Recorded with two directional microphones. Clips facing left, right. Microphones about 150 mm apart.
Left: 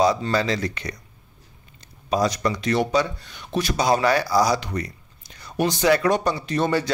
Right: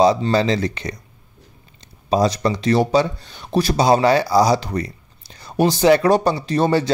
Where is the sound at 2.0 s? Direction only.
30° right (ahead or behind).